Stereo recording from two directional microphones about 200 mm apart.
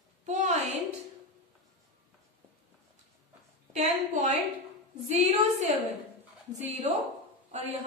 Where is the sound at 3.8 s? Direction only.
35° right (ahead or behind).